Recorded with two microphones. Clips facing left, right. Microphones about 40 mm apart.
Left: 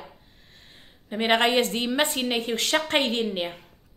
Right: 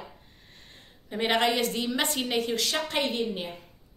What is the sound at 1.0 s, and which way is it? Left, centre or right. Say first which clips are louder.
Speech: left 3 dB; centre.